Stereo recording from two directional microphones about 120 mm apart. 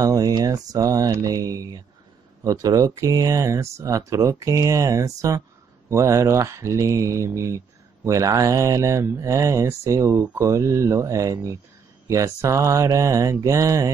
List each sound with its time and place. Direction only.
0.0 s speech: 30° right (ahead or behind)